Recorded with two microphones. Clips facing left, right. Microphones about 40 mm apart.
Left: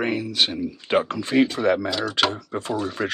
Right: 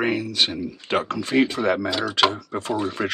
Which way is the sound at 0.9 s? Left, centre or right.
Centre.